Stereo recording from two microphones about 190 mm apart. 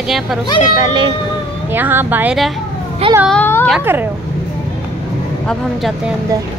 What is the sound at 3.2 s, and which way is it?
Speech, 10° left (ahead or behind).